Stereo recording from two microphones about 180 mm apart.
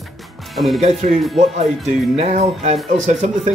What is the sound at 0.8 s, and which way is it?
Speech, 35° right (ahead or behind).